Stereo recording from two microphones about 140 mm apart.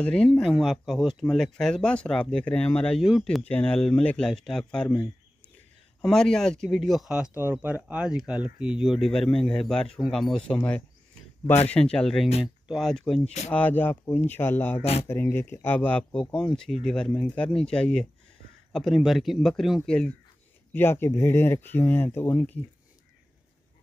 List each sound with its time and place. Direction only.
0.0 s speech: 5° left (ahead or behind)
13.2 s speech: 55° left (ahead or behind)
13.5 s speech: 10° left (ahead or behind)
20.7 s speech: 15° left (ahead or behind)